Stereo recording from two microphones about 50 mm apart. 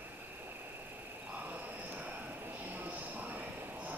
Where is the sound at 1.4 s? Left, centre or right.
Right.